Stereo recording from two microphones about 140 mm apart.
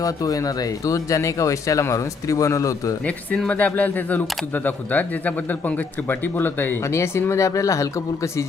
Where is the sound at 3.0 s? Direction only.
10° left (ahead or behind).